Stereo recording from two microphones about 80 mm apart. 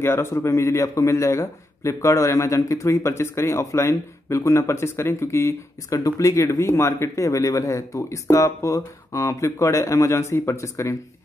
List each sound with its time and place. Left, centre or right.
0.0 s a man's voice: left